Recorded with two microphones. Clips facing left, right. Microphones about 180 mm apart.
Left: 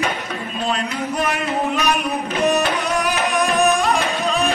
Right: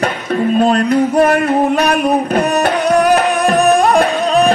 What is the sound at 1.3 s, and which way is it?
Music, 60° right (ahead or behind).